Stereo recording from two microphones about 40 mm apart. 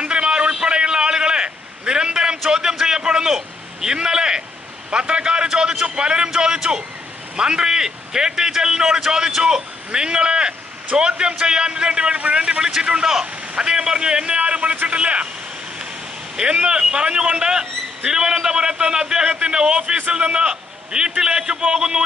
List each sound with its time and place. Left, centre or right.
0.0 s a sound: right
3.3 s vehicle: centre
4.9 s a man's voice: right
16.3 s speech: right